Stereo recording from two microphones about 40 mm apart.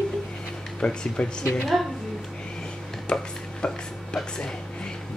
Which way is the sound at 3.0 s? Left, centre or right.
Left.